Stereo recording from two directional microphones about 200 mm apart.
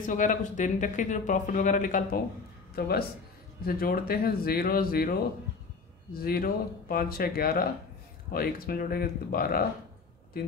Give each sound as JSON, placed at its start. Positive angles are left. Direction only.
{"t": 0.0, "sound": "a man's voice", "side_deg": 40}
{"t": 6.1, "sound": "a man's voice", "side_deg": 50}